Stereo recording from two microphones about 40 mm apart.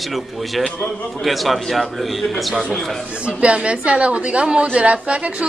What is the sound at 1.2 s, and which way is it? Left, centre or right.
Speech, centre.